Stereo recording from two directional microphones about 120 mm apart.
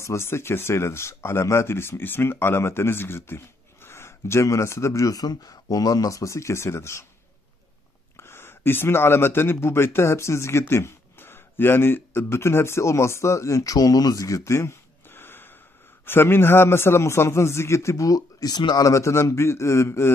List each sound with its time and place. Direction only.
0.0 s speech: 25° left (ahead or behind)
8.2 s speech: 20° left (ahead or behind)